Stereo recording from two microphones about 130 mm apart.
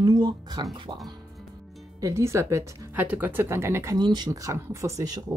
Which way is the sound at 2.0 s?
20° right (ahead or behind).